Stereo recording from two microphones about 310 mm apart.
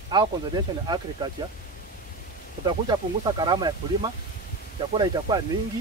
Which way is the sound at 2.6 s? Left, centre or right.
Centre.